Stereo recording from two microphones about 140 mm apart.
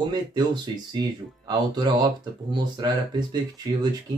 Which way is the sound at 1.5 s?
30° right (ahead or behind).